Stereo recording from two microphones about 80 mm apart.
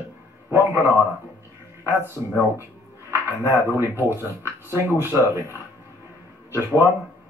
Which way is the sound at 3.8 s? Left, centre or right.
Right.